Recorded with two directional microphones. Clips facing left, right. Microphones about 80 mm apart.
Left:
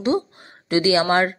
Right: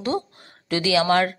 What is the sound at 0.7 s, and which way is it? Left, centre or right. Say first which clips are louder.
Speech: left 2 dB; left.